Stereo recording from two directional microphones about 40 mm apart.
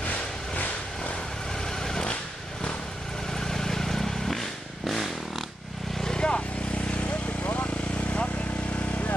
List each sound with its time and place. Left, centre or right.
1.7 s vehicle: centre
3.3 s vehicle: centre
5.9 s vehicle: centre
6.9 s vehicle: left